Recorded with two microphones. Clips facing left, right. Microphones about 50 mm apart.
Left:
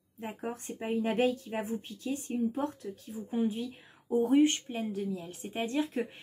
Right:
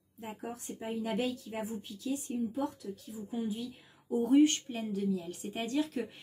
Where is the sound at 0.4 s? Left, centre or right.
Left.